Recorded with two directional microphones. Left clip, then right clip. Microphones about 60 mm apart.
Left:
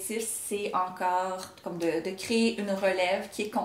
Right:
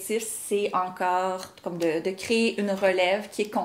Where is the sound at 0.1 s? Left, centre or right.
Right.